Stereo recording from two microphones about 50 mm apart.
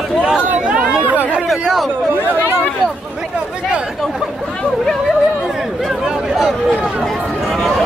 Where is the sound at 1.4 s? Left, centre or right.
Centre.